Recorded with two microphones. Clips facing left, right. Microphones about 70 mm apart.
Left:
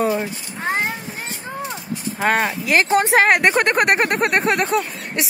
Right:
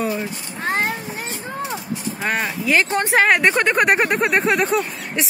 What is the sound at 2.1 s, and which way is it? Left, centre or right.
Speech, left.